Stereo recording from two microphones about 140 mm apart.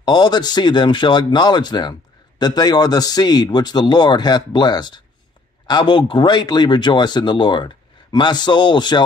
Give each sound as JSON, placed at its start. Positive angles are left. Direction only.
{"t": 0.0, "sound": "speech", "side_deg": 30}